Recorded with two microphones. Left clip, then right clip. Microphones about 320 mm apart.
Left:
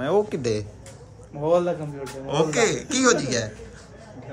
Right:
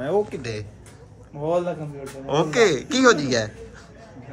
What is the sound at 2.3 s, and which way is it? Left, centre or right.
A man's voice, centre.